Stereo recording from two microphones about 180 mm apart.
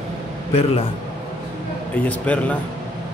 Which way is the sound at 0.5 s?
35° left (ahead or behind).